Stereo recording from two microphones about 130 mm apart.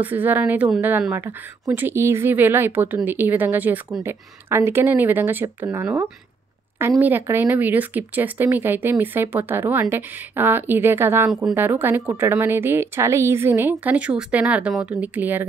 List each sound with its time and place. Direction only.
0.0 s speech: 15° right (ahead or behind)
11.2 s speech: 5° right (ahead or behind)
11.5 s speech: 15° right (ahead or behind)